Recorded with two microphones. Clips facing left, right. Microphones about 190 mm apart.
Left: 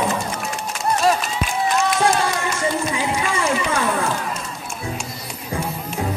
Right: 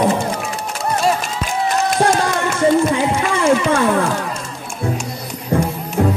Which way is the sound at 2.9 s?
50° right (ahead or behind).